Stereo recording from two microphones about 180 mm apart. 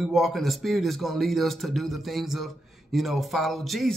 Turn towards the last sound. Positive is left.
turn(degrees=0)  # may be behind; listen again after turning